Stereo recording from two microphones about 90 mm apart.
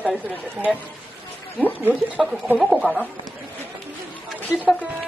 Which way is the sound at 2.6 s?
5° right (ahead or behind).